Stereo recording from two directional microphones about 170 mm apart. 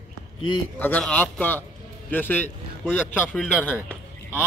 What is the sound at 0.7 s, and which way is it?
A man's voice, 10° left (ahead or behind).